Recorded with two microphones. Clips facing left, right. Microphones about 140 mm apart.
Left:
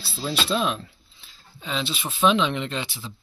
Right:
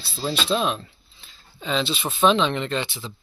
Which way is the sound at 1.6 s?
10° left (ahead or behind).